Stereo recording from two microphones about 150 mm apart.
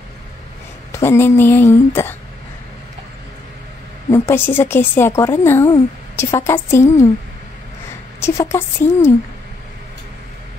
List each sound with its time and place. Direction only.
0.9 s speech: 15° left (ahead or behind)
4.1 s speech: 15° left (ahead or behind)
8.2 s speech: 15° left (ahead or behind)